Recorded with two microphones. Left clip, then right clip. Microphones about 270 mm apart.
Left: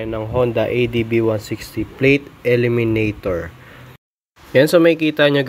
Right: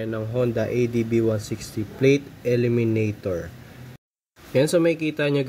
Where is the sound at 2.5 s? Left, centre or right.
Centre.